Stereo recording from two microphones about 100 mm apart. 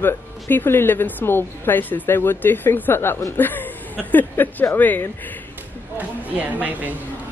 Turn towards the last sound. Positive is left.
turn(degrees=-15)  # may be behind; listen again after turning